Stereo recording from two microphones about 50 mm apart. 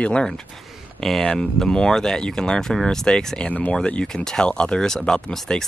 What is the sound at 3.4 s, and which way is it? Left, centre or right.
Speech, left.